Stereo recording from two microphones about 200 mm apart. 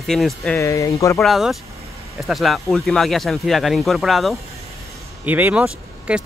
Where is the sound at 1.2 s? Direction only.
Centre (ahead or behind).